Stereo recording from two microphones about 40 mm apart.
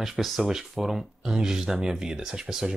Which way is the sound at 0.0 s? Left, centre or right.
Centre.